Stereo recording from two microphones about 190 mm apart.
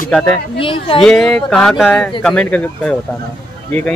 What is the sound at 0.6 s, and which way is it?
Speech, 30° left (ahead or behind).